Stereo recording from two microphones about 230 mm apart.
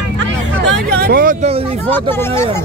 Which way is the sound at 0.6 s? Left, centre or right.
Right.